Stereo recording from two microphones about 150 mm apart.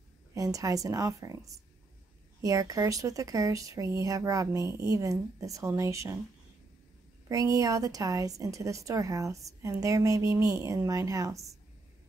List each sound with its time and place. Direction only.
0.3 s a woman's voice: 25° right (ahead or behind)
7.2 s a woman's voice: 20° right (ahead or behind)